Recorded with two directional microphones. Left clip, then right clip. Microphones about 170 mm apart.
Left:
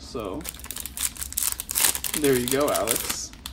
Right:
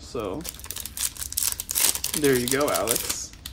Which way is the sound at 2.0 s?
10° left (ahead or behind).